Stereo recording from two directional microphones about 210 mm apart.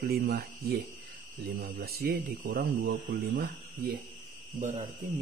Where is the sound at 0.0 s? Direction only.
45° right (ahead or behind).